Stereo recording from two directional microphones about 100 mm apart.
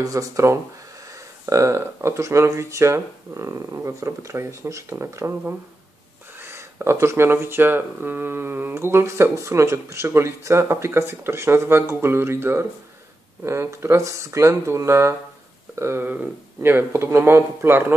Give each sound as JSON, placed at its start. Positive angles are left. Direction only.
{"t": 0.0, "sound": "speech", "side_deg": -35}
{"t": 6.4, "sound": "speech", "side_deg": -25}